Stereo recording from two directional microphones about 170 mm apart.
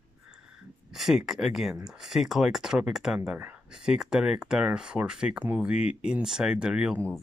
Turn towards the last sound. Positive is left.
turn(degrees=-5)  # may be behind; listen again after turning